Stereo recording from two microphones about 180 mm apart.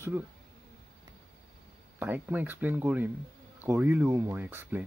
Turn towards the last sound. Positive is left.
turn(degrees=-10)  # may be behind; listen again after turning